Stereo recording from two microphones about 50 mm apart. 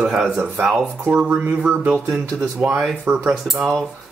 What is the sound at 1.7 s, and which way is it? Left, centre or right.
Speech, right.